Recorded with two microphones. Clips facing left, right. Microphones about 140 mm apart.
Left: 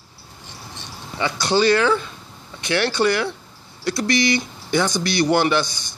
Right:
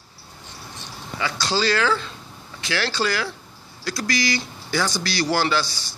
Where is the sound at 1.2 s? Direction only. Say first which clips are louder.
Left 5 dB; 20° left (ahead or behind).